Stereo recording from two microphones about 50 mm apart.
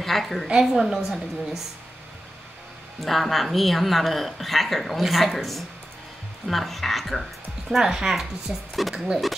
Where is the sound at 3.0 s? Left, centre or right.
Centre.